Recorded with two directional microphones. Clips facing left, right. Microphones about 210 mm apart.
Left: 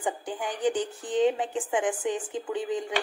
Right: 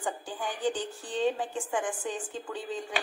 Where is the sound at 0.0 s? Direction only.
20° left (ahead or behind).